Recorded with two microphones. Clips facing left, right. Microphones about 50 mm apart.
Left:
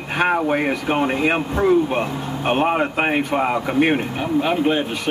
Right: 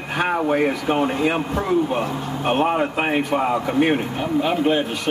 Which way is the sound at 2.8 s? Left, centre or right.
Left.